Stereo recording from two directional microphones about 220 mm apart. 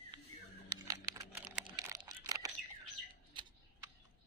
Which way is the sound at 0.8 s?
15° right (ahead or behind).